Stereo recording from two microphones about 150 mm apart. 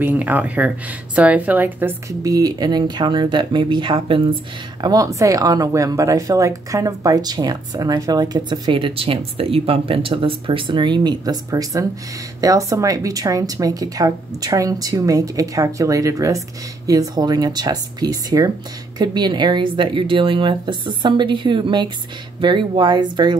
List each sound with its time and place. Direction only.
0.0 s a woman's voice: 10° right (ahead or behind); by 4.4 s 35° right (ahead or behind)
4.8 s a woman's voice: 25° right (ahead or behind)